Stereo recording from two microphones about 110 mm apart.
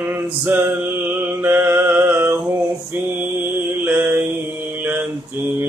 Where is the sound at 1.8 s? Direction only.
20° right (ahead or behind).